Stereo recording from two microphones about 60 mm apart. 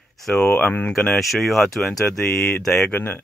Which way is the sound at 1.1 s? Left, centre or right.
Centre.